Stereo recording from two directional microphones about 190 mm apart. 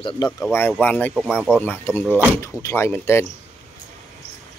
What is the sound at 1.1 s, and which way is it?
Speech, 5° right (ahead or behind).